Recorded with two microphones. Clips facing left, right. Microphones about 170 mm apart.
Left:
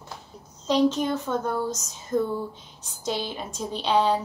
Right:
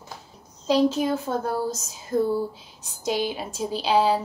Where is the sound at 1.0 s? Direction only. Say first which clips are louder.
Right 1 dB; 35° right (ahead or behind).